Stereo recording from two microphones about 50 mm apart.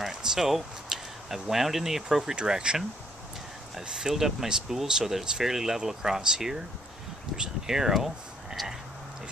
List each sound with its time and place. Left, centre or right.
0.0 s speech: centre
3.8 s speech: centre